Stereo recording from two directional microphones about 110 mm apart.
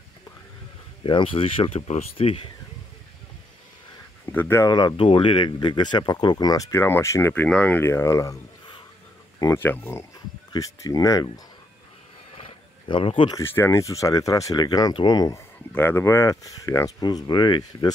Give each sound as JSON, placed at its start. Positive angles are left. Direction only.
{"t": 1.0, "sound": "speech", "side_deg": 50}
{"t": 4.3, "sound": "speech", "side_deg": 20}
{"t": 4.6, "sound": "speech", "side_deg": 40}
{"t": 4.9, "sound": "speech", "side_deg": 55}
{"t": 7.4, "sound": "speech", "side_deg": 10}
{"t": 7.8, "sound": "speech", "side_deg": 25}
{"t": 9.4, "sound": "speech", "side_deg": 25}
{"t": 10.5, "sound": "speech", "side_deg": 30}
{"t": 12.8, "sound": "speech", "side_deg": 50}
{"t": 13.4, "sound": "speech", "side_deg": 25}
{"t": 15.7, "sound": "speech", "side_deg": 15}